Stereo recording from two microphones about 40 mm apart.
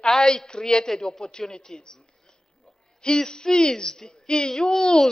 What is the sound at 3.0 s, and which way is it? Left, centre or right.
A man's voice, centre.